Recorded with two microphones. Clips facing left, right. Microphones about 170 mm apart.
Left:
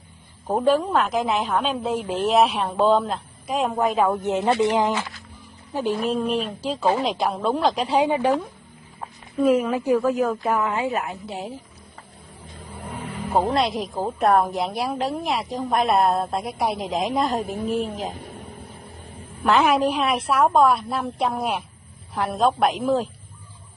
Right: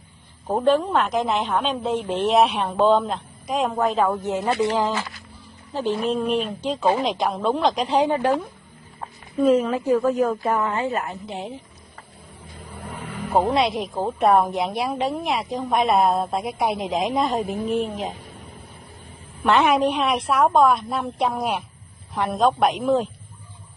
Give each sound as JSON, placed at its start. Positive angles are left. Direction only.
{"t": 0.5, "sound": "a woman's voice", "side_deg": 10}
{"t": 10.2, "sound": "a woman's voice", "side_deg": -10}
{"t": 10.5, "sound": "speech", "side_deg": 10}
{"t": 12.7, "sound": "vehicle", "side_deg": 10}
{"t": 13.5, "sound": "a woman's voice", "side_deg": 0}
{"t": 19.4, "sound": "a woman's voice", "side_deg": 0}